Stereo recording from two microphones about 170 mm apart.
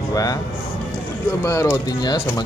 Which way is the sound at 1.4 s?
20° left (ahead or behind).